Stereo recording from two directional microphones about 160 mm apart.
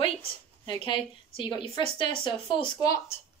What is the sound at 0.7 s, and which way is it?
A woman's voice, 30° left (ahead or behind).